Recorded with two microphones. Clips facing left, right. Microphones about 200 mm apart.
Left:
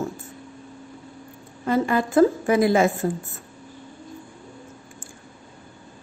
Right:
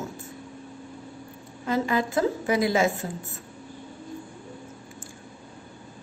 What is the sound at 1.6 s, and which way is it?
A woman's voice, 50° left (ahead or behind).